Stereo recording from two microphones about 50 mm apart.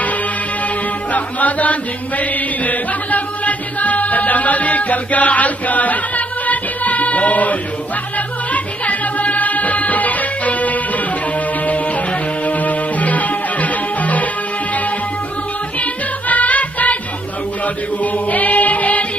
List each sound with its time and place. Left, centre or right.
1.1 s chant: left
8.8 s music: left
12.4 s music: left
15.8 s music: left
18.3 s music: left